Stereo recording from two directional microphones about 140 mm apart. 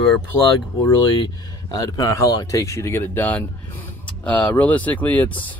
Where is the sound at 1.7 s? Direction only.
25° left (ahead or behind).